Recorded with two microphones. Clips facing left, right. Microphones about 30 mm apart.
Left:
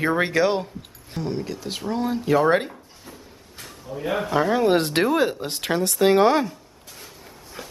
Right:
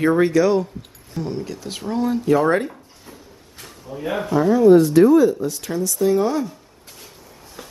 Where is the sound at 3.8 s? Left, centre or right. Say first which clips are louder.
Right 1 dB; centre.